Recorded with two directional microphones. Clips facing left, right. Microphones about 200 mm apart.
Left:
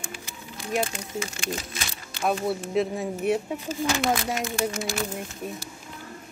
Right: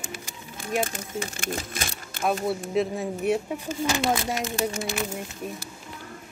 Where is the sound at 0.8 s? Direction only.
45° right (ahead or behind).